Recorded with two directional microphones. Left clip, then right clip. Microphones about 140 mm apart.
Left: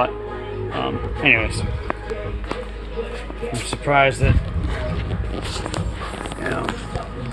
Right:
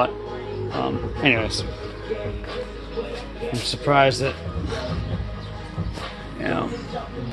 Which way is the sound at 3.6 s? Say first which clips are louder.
Left 1 dB; 25° right (ahead or behind).